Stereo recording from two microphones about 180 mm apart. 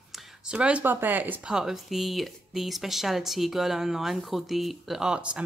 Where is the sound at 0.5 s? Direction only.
5° right (ahead or behind).